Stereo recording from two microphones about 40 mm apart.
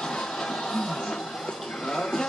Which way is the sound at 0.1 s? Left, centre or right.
Centre.